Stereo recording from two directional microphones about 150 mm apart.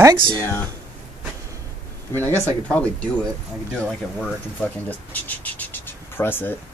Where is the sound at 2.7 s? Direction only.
10° left (ahead or behind).